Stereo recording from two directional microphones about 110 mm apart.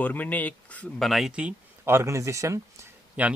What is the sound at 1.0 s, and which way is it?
Speech, centre (ahead or behind).